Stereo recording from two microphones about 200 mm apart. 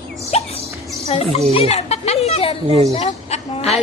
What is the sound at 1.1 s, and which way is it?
A woman's voice, 30° left (ahead or behind).